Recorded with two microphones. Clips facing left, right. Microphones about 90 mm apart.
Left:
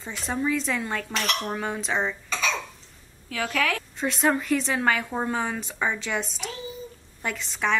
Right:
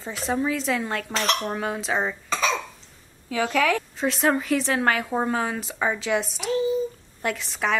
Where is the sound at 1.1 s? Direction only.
35° right (ahead or behind).